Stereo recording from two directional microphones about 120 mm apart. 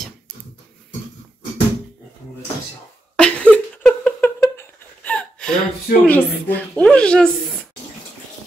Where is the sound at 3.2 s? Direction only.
10° left (ahead or behind).